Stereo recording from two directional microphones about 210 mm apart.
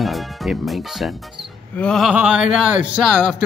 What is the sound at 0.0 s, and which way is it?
A man's voice, centre (ahead or behind).